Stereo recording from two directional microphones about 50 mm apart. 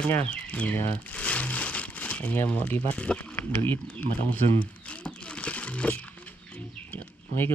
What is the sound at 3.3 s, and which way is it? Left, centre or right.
Speech, left.